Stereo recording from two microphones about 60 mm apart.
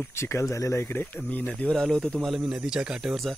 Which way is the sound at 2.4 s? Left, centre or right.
Centre.